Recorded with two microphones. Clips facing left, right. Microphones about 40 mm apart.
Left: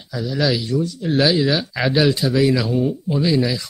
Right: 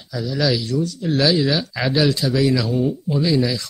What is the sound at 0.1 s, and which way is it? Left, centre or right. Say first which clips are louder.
Speech: even; centre.